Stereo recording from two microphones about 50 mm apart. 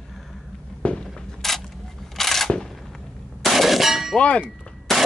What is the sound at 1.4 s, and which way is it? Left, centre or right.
Single-lens reflex camera, centre.